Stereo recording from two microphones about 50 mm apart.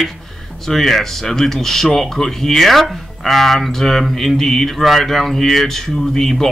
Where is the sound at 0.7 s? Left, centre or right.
Centre.